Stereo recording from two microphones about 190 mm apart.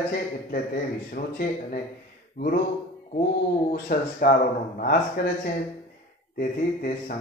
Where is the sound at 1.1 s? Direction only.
50° left (ahead or behind).